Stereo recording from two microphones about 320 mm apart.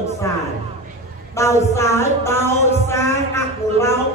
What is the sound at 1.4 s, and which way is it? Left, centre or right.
A woman's voice, centre.